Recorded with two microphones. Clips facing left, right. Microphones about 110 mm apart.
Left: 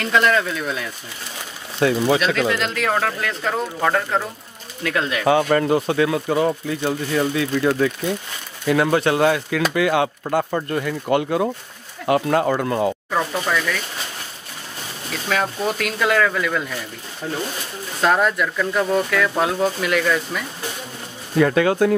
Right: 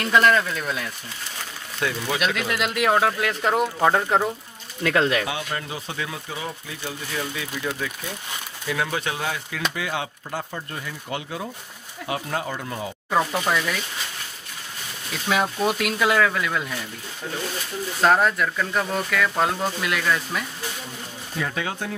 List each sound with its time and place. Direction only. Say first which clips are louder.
0.1 s speech: even; centre (ahead or behind)
1.8 s speech: left 9 dB; 30° left (ahead or behind)
2.5 s speech: even; 10° right (ahead or behind)
5.2 s speech: left 13 dB; 50° left (ahead or behind); by 12.9 s 70° left (ahead or behind)
13.1 s speech: left 1 dB; 15° right (ahead or behind)
15.2 s speech: even; 5° right (ahead or behind)
18.0 s speech: left 1 dB; centre (ahead or behind)
21.4 s speech: left 13 dB; 65° left (ahead or behind)